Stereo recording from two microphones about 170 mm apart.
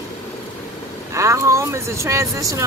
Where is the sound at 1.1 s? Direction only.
15° right (ahead or behind).